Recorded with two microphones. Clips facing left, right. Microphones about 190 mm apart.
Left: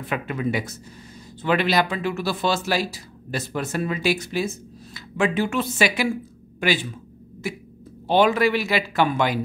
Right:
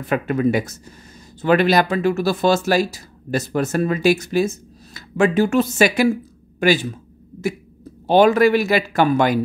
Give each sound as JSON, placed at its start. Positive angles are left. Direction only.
{"t": 0.0, "sound": "speech", "side_deg": -45}